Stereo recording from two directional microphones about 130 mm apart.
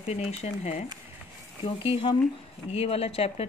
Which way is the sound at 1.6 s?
45° left (ahead or behind).